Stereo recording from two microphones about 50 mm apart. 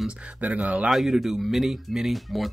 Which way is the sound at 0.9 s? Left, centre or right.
Centre.